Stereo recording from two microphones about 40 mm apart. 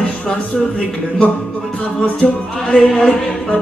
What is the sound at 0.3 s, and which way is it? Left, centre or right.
Speech, centre.